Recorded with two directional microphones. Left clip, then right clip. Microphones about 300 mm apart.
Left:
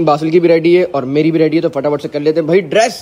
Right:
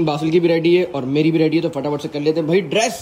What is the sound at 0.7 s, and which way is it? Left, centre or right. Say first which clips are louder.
A man's voice: left 5 dB; left.